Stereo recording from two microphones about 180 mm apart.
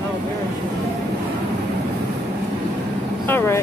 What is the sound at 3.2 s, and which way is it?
Speech, 15° left (ahead or behind).